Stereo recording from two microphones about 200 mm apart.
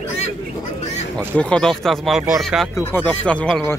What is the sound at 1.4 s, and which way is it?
A man's voice, 5° left (ahead or behind).